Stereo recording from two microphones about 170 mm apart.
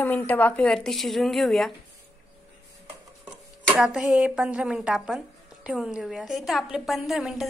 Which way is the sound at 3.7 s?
Centre (ahead or behind).